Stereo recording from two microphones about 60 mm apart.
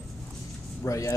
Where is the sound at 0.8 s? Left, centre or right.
Left.